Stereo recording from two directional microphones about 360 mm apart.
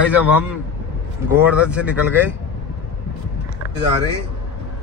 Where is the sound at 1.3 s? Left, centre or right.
Centre.